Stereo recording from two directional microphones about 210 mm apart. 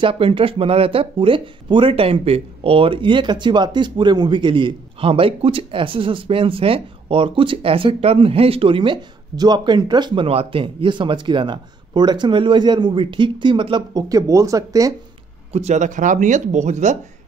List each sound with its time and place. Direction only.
0.0 s speech: 25° right (ahead or behind)
15.5 s speech: 35° right (ahead or behind)